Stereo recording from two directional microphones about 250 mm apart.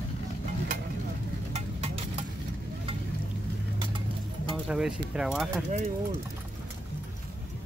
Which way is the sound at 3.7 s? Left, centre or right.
Centre.